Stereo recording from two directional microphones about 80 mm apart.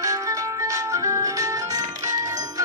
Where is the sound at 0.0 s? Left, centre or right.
Right.